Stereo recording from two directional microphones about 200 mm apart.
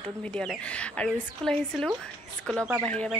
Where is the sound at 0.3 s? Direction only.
5° left (ahead or behind).